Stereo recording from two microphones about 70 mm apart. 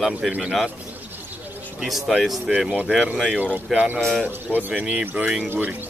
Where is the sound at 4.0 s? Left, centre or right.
Centre.